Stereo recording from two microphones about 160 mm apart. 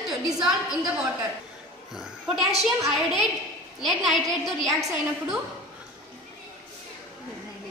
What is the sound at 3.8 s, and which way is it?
Speech, centre (ahead or behind).